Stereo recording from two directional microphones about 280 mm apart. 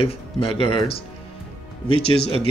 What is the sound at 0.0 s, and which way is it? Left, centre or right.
Speech, left.